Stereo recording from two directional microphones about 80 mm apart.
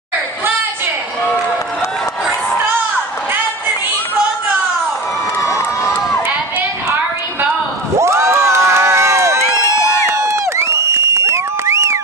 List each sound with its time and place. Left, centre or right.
8.0 s crowd: right